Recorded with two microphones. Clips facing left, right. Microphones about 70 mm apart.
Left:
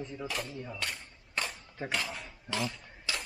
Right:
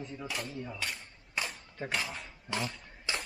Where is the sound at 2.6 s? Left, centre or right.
Centre.